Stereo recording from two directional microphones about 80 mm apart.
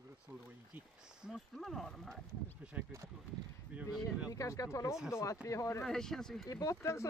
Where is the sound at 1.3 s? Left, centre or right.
Centre.